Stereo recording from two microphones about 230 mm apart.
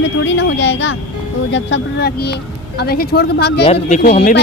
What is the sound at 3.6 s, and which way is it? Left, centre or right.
Speech, left.